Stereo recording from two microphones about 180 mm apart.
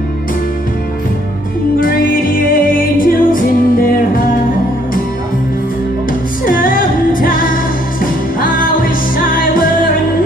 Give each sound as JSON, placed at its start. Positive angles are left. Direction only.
{"t": 1.8, "sound": "music", "side_deg": 50}
{"t": 6.4, "sound": "music", "side_deg": 50}